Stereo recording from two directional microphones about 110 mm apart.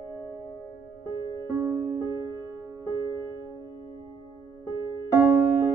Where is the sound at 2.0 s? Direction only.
30° right (ahead or behind).